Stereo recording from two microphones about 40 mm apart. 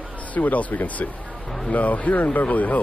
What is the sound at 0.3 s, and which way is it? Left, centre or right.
Speech, left.